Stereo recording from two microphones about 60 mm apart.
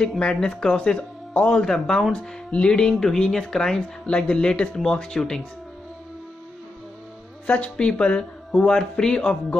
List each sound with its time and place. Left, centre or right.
0.2 s speech: centre
1.6 s speech: centre
7.4 s a woman's voice: left